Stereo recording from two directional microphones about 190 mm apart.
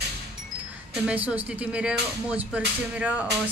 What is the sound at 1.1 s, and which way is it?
Speech, 5° right (ahead or behind).